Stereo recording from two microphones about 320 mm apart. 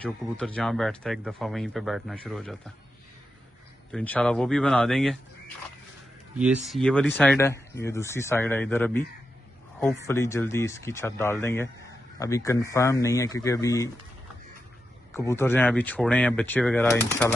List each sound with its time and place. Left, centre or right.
0.0 s speech: centre
3.9 s speech: centre
6.3 s speech: centre
15.1 s speech: centre